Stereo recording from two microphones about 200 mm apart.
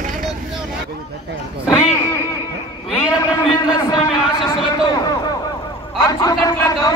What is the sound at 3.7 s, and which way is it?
A man's voice, 20° left (ahead or behind).